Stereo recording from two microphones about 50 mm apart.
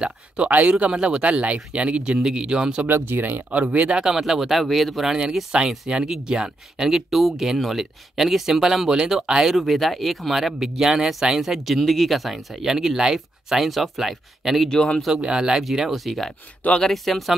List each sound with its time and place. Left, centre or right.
0.5 s speech: right
2.9 s speech: right
3.3 s speech: right
4.0 s speech: centre
5.5 s speech: centre
9.5 s speech: centre
14.7 s speech: centre
15.1 s speech: centre